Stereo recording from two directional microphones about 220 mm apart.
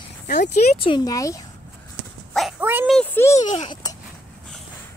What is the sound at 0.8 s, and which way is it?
Speech, 20° left (ahead or behind).